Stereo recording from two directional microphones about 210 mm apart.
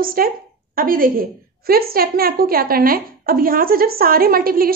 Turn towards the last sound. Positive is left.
turn(degrees=-45)  # may be behind; listen again after turning